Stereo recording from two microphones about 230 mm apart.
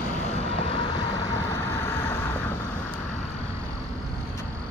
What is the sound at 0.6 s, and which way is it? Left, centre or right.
Vehicle, left.